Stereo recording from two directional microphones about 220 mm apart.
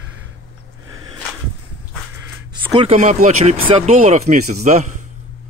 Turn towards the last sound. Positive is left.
turn(degrees=-35)  # may be behind; listen again after turning